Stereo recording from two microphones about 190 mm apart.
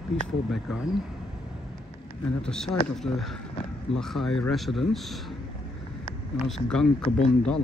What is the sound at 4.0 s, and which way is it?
Speech, centre (ahead or behind).